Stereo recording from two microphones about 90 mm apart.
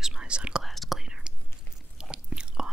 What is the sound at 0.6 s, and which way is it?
Whispering, centre (ahead or behind).